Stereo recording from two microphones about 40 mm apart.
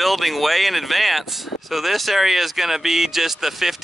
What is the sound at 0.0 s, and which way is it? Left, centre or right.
Speech, centre.